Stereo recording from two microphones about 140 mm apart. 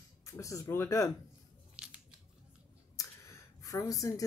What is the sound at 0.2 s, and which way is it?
Speech, 20° left (ahead or behind).